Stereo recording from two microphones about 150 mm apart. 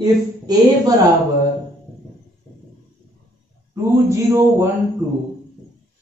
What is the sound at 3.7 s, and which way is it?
Speech, 20° right (ahead or behind).